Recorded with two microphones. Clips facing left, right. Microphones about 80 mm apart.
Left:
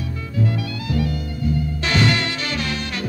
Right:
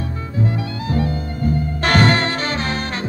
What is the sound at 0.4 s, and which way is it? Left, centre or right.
Music, right.